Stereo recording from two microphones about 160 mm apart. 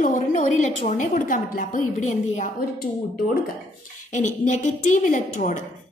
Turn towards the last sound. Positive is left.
turn(degrees=55)  # may be behind; listen again after turning